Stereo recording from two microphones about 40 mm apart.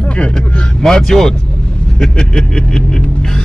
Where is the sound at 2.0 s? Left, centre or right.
Centre.